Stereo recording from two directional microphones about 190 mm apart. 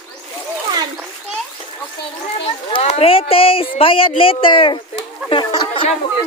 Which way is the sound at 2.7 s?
35° left (ahead or behind).